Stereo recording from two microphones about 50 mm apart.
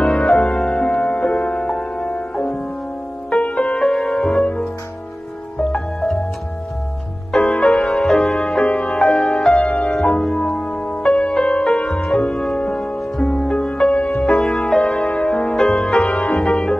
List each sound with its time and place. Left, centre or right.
0.0 s music: centre
3.5 s music: centre
7.6 s music: centre
10.3 s music: left